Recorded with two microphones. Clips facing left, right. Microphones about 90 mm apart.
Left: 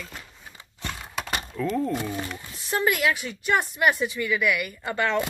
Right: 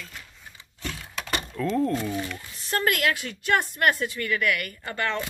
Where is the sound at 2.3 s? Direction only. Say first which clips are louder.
Left 1 dB; 10° left (ahead or behind).